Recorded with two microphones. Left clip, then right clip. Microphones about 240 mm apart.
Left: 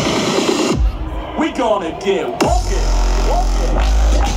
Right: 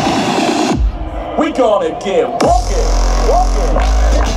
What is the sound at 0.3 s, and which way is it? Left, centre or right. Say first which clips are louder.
Music: right 2 dB; centre.